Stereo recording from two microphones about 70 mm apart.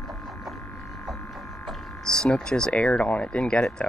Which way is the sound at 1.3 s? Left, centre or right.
Centre.